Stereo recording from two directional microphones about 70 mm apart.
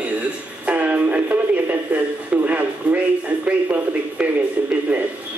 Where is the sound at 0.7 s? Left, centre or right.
Centre.